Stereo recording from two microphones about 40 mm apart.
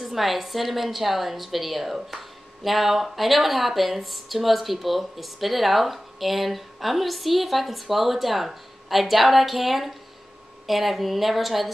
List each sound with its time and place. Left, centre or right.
0.0 s speech: centre